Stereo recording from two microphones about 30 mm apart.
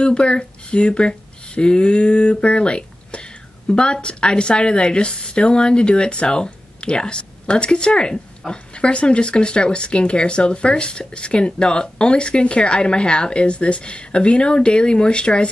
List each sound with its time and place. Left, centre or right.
0.0 s speech: left